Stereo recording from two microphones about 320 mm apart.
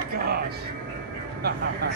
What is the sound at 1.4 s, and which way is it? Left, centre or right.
Speech, right.